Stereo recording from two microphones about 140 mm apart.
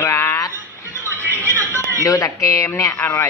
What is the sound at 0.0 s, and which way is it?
Music, 20° left (ahead or behind).